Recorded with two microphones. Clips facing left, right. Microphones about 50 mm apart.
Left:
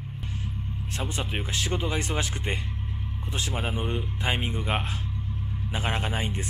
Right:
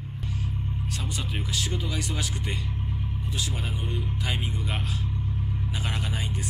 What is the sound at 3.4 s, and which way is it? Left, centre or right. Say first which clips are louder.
Music: left 4 dB; left.